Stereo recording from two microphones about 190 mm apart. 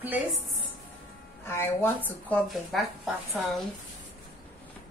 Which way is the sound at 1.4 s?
15° left (ahead or behind).